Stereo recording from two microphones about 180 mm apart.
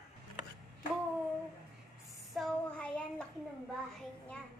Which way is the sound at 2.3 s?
5° left (ahead or behind).